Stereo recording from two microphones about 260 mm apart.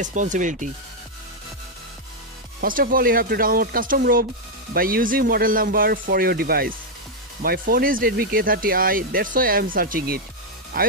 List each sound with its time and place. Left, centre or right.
0.0 s speech: right
2.6 s speech: right